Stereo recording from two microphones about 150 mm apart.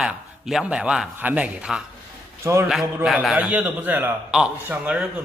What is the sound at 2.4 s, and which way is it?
Speech, 20° right (ahead or behind).